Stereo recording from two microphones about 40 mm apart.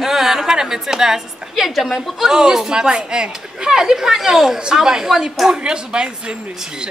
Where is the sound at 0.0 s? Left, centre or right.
Centre.